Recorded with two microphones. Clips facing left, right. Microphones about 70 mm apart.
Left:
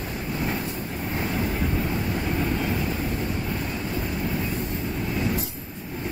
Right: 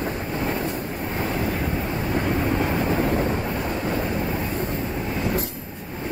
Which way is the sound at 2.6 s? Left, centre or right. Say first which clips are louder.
Right 5 dB; right.